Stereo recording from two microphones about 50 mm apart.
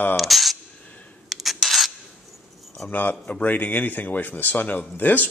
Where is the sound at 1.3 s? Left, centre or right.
Centre.